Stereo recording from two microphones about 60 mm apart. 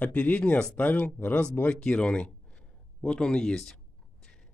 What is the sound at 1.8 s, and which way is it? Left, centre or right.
Speech, centre.